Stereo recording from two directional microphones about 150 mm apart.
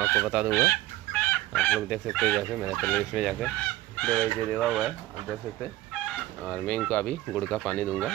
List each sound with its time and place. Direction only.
0.2 s chicken: 10° right (ahead or behind)
0.5 s chicken: 15° left (ahead or behind)
1.8 s speech: 5° left (ahead or behind)
6.0 s speech: 5° left (ahead or behind)